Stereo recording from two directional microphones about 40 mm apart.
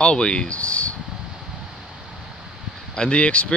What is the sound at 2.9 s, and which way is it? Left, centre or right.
Speech, left.